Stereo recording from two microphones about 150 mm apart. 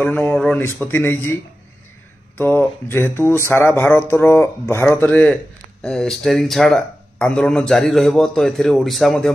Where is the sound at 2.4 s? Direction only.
15° left (ahead or behind).